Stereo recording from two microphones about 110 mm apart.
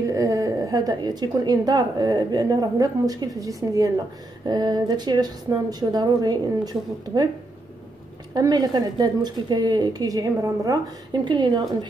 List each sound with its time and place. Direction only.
0.0 s a woman's voice: 30° right (ahead or behind)
8.4 s a woman's voice: 35° right (ahead or behind)
11.2 s speech: 45° right (ahead or behind)